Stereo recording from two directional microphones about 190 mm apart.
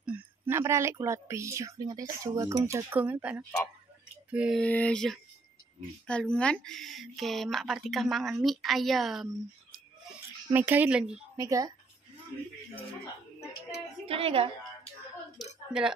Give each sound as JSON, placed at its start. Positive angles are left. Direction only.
{"t": 0.0, "sound": "speech", "side_deg": -10}
{"t": 10.5, "sound": "speech", "side_deg": -10}
{"t": 11.3, "sound": "speech", "side_deg": -15}
{"t": 14.0, "sound": "a woman's voice", "side_deg": -30}
{"t": 15.3, "sound": "a sound", "side_deg": -5}